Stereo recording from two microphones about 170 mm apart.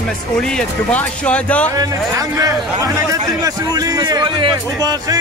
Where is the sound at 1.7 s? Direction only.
20° right (ahead or behind).